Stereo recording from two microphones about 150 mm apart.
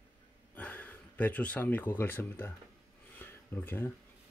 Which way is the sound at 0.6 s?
10° left (ahead or behind).